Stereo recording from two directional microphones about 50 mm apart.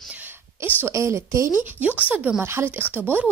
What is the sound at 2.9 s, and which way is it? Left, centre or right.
Speech, right.